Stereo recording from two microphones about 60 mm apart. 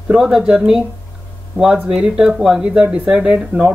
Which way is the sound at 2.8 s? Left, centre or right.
Right.